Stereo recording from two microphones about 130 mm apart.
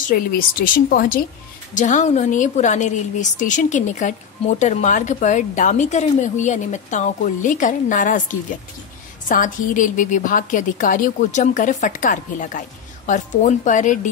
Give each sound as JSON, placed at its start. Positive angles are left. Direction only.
{"t": 0.1, "sound": "speech", "side_deg": 90}
{"t": 1.7, "sound": "a woman's voice", "side_deg": 70}